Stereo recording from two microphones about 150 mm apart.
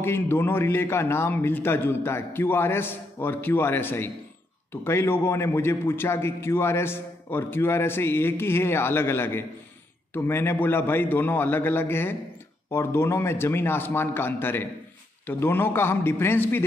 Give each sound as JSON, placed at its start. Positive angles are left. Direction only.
{"t": 0.0, "sound": "a man's voice", "side_deg": 15}